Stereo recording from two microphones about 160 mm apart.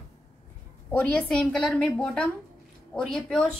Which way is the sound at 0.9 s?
10° left (ahead or behind).